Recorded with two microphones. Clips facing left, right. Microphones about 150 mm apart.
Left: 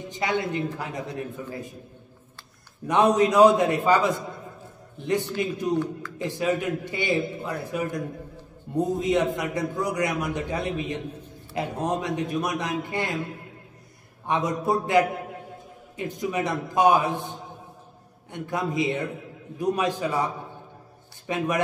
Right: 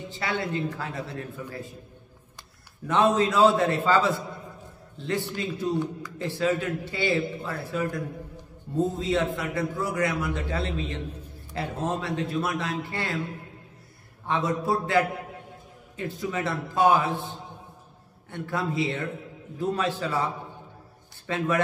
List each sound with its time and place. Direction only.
0.1 s a man's voice: 20° left (ahead or behind)
2.9 s a man's voice: 15° left (ahead or behind)
14.2 s a man's voice: 20° left (ahead or behind)